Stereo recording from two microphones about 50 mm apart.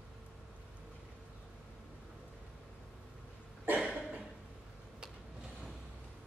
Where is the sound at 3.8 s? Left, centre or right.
Right.